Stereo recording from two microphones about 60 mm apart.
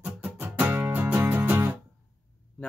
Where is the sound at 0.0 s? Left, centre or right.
Right.